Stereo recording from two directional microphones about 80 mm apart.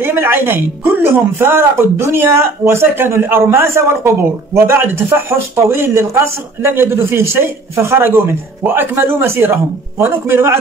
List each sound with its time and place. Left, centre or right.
0.0 s music: right
1.0 s a man's voice: right